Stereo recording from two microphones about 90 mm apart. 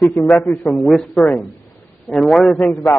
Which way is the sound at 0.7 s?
Centre (ahead or behind).